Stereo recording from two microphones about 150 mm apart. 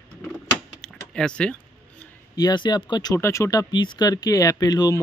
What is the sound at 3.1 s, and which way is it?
Speech, 20° left (ahead or behind).